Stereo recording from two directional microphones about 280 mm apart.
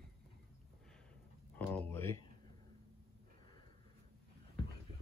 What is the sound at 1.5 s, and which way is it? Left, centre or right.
Speech, centre.